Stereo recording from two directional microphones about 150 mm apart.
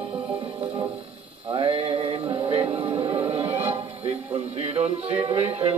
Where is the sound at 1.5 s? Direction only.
35° right (ahead or behind).